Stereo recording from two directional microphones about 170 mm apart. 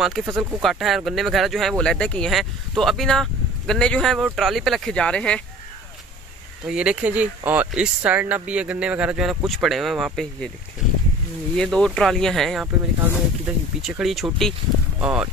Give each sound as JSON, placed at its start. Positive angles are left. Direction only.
{"t": 0.0, "sound": "speech", "side_deg": 0}
{"t": 6.7, "sound": "speech", "side_deg": -5}
{"t": 11.5, "sound": "speech", "side_deg": 5}